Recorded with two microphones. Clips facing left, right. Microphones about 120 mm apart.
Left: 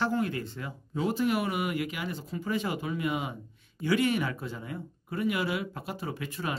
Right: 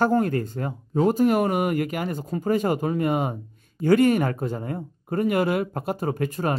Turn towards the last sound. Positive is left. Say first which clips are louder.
# right 9 dB
turn(degrees=-45)  # may be behind; listen again after turning